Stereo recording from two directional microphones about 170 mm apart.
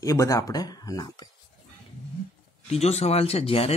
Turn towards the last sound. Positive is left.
turn(degrees=35)  # may be behind; listen again after turning